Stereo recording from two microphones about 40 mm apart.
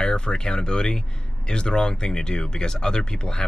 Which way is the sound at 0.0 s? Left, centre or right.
Left.